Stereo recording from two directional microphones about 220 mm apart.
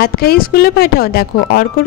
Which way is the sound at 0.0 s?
45° left (ahead or behind).